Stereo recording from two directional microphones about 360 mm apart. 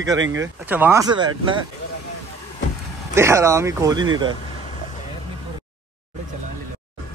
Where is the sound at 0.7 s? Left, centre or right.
Centre.